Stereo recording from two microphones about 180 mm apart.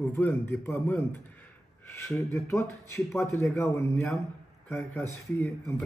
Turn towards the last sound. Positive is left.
turn(degrees=15)  # may be behind; listen again after turning